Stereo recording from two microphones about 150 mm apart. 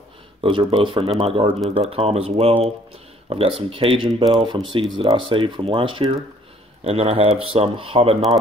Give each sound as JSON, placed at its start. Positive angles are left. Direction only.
{"t": 0.4, "sound": "speech", "side_deg": -35}